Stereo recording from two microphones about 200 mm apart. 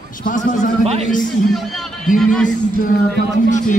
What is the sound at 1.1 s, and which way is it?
Speech, centre (ahead or behind).